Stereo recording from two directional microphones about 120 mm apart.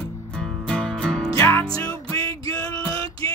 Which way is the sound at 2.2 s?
30° left (ahead or behind).